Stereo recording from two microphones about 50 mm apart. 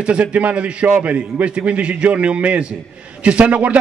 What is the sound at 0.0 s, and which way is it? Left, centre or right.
A man's voice, right.